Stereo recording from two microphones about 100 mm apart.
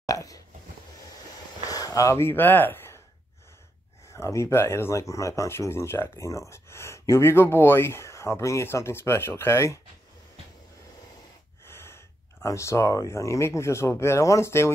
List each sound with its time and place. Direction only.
0.0 s a sound: 35° left (ahead or behind)
1.7 s speech: 40° left (ahead or behind); by 3.0 s 25° left (ahead or behind)
4.1 s speech: 30° left (ahead or behind)
11.6 s speech: 25° left (ahead or behind)